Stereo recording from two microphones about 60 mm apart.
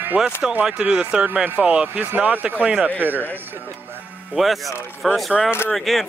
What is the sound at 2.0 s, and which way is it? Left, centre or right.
Speech, right.